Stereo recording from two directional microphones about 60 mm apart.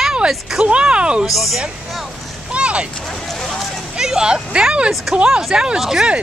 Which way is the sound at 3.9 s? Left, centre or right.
Centre.